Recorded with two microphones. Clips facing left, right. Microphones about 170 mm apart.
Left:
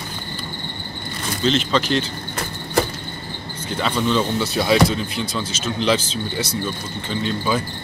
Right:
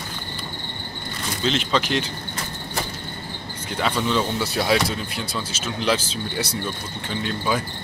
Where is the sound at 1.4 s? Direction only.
5° right (ahead or behind).